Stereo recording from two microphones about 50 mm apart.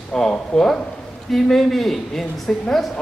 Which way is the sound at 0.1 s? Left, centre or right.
Centre.